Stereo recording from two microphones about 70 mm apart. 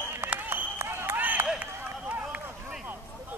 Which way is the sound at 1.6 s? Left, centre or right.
Right.